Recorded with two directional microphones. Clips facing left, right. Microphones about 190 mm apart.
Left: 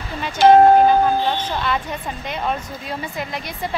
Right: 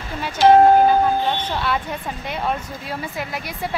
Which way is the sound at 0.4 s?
55° left (ahead or behind).